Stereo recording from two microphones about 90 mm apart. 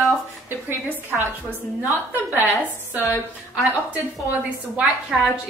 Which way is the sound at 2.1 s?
20° right (ahead or behind).